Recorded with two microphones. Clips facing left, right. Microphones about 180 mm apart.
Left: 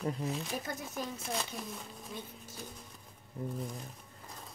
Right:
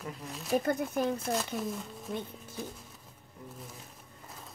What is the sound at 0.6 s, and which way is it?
Speech, 60° right (ahead or behind).